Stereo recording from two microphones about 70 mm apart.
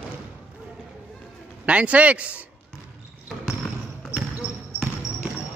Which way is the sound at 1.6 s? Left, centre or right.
Centre.